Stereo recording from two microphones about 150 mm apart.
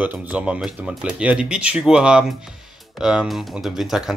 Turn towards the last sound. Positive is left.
turn(degrees=0)  # may be behind; listen again after turning